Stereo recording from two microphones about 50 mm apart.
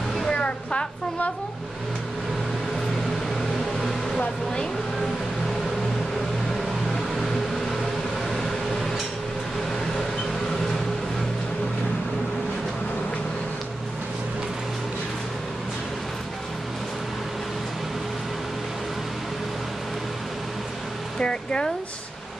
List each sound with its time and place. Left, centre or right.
0.3 s music: centre
21.2 s music: centre